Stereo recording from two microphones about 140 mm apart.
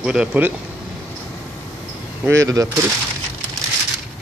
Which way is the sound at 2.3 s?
20° right (ahead or behind).